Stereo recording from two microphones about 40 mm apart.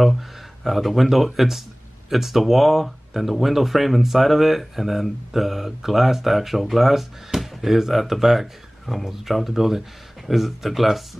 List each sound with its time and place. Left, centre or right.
0.7 s speech: centre